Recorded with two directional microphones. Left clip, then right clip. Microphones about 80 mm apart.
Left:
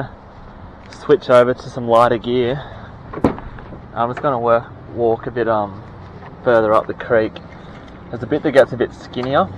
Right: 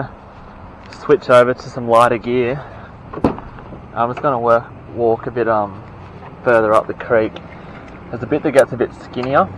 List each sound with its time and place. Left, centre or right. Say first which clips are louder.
1.0 s speech: right 1 dB; centre